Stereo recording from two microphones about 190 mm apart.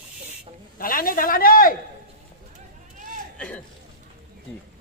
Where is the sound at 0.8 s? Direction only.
50° left (ahead or behind).